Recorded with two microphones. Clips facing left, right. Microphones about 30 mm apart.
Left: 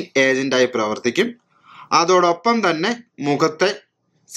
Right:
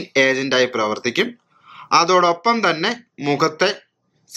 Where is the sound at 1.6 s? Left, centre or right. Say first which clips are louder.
Right 1 dB; centre.